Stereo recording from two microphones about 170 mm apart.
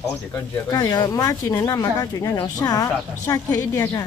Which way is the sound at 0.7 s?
20° left (ahead or behind).